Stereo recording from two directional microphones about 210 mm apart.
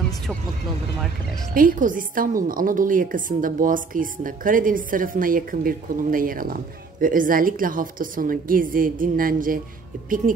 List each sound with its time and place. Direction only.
1.5 s a woman's voice: 40° right (ahead or behind)